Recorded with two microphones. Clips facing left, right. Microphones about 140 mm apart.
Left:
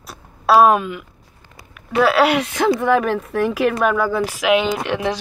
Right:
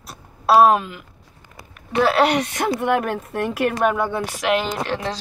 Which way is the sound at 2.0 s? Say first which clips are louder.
Left 2 dB; 5° left (ahead or behind).